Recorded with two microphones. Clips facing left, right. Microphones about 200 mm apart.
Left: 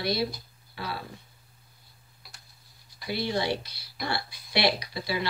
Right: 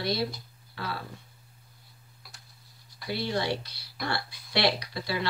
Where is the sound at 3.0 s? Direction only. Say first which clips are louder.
Left 1 dB; 10° left (ahead or behind).